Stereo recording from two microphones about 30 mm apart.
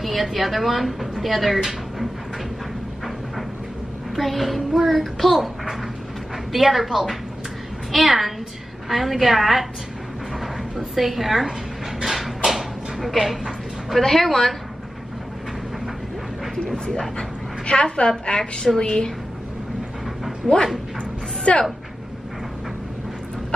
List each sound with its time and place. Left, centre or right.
0.0 s a woman's voice: centre
4.1 s a child's voice: centre
11.0 s a child's voice: centre
12.0 s a sound: centre
13.0 s a child's voice: centre
16.7 s a woman's voice: left
20.4 s speech: right
21.5 s a woman's voice: left